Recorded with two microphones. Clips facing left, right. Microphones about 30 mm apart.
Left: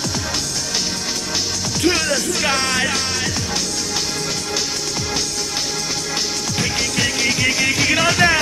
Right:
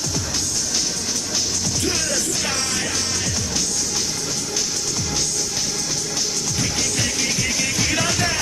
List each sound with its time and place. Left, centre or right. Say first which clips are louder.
1.8 s music: left 8 dB; left
6.6 s music: left 4 dB; left